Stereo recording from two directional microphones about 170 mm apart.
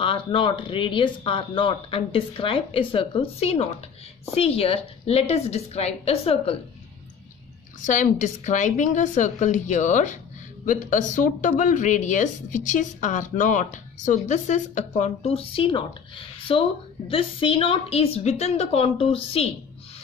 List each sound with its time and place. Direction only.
0.0 s speech: 30° left (ahead or behind)
7.8 s speech: 50° left (ahead or behind)